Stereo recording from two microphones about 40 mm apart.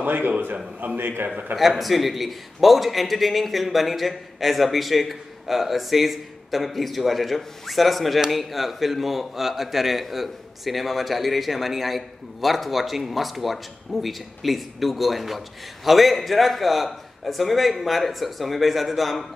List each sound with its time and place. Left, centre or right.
0.0 s a man's voice: right
1.6 s a man's voice: centre